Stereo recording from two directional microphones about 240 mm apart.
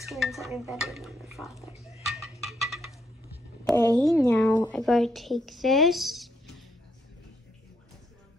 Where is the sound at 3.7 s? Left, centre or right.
Centre.